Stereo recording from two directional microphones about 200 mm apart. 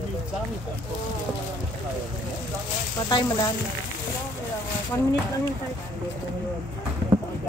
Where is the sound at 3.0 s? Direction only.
20° left (ahead or behind).